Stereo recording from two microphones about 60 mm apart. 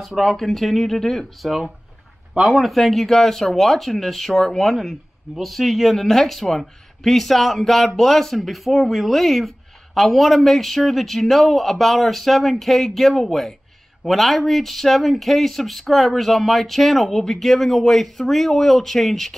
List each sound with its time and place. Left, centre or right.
0.0 s speech: centre